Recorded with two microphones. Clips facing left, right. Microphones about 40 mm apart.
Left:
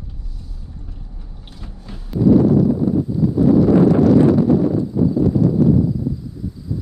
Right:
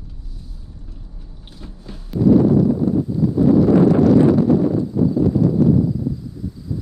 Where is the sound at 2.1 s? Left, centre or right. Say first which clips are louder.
Even; centre.